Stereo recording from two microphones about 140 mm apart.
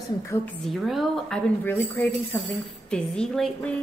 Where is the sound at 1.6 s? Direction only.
15° left (ahead or behind).